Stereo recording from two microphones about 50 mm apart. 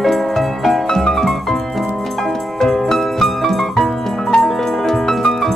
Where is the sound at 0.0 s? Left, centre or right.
Centre.